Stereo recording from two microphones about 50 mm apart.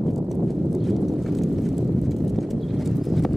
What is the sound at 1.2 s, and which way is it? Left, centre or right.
Clip-clop, centre.